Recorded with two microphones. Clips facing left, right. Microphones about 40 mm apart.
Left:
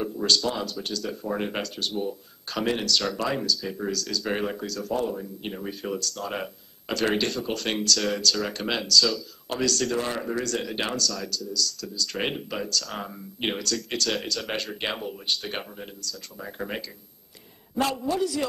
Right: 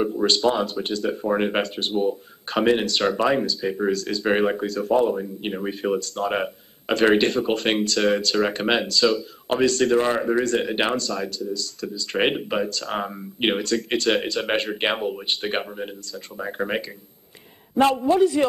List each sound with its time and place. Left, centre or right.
0.0 s speech: right